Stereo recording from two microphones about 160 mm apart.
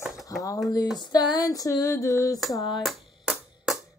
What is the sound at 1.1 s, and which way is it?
Female singing, 25° left (ahead or behind).